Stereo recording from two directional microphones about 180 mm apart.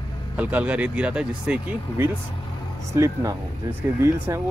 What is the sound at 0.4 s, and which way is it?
Speech, 10° right (ahead or behind).